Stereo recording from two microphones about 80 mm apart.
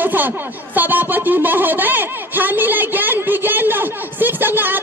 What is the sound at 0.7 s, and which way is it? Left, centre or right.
Speech, right.